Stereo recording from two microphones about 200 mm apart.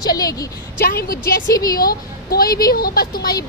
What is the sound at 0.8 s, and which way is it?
Speech, 50° left (ahead or behind).